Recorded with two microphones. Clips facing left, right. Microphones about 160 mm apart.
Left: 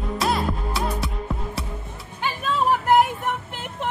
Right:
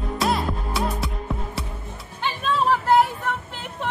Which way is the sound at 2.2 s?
10° left (ahead or behind).